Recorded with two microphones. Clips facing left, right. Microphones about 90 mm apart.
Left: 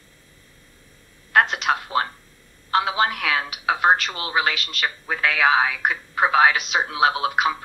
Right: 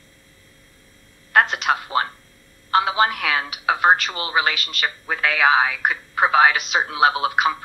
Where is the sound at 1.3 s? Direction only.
Centre (ahead or behind).